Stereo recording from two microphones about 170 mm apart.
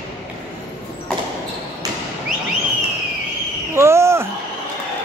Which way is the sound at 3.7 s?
15° right (ahead or behind).